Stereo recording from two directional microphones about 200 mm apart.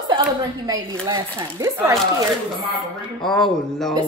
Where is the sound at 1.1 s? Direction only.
20° right (ahead or behind).